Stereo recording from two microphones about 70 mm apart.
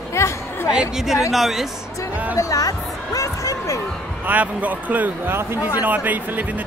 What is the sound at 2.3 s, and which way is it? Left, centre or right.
Speech, left.